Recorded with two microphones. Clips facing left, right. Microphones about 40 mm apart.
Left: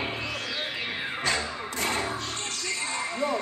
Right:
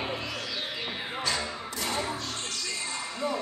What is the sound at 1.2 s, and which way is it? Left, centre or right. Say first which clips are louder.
Music: left 2 dB; left.